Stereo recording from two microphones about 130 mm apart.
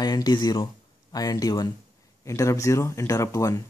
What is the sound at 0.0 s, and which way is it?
Speech, 30° left (ahead or behind).